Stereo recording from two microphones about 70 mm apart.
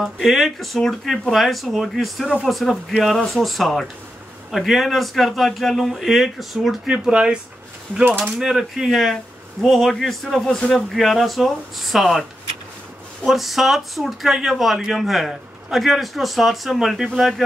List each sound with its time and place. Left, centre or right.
0.0 s speech: centre
6.9 s speech: centre
8.4 s speech: centre